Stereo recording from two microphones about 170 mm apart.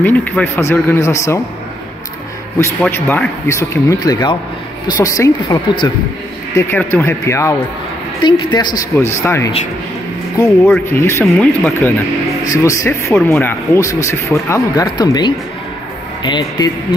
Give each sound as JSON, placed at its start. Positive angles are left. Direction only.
{"t": 0.0, "sound": "speech", "side_deg": 10}
{"t": 2.8, "sound": "speech", "side_deg": 10}
{"t": 10.7, "sound": "speech", "side_deg": 15}
{"t": 11.2, "sound": "speech", "side_deg": 5}
{"t": 12.4, "sound": "speech", "side_deg": 20}